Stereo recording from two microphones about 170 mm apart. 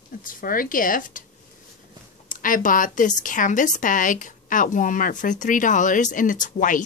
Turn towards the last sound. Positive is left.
turn(degrees=50)  # may be behind; listen again after turning